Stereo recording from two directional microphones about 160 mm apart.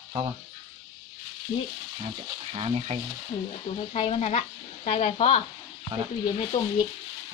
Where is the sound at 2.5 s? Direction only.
40° right (ahead or behind).